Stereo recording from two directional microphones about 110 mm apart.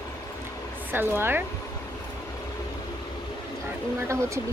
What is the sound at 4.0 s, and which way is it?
Speech, 25° right (ahead or behind).